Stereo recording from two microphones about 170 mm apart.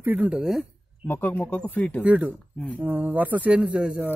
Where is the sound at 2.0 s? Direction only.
10° right (ahead or behind).